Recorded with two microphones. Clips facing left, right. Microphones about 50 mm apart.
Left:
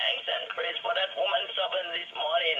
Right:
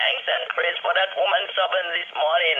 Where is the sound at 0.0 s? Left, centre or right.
Right.